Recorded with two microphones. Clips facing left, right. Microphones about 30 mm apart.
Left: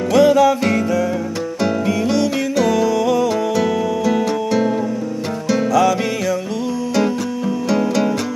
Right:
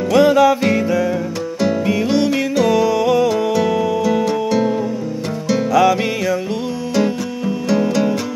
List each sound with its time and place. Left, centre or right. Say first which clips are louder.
0.1 s music: even; centre
2.3 s music: right 1 dB; centre
2.7 s music: right 3 dB; centre
5.7 s music: right 2 dB; centre
7.0 s music: right 1 dB; centre